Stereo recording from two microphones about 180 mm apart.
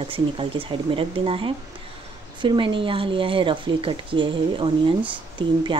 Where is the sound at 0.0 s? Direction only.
30° right (ahead or behind).